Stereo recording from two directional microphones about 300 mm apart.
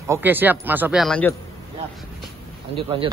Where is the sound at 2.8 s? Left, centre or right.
Centre.